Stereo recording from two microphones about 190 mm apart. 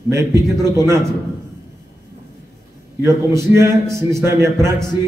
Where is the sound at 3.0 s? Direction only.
15° right (ahead or behind).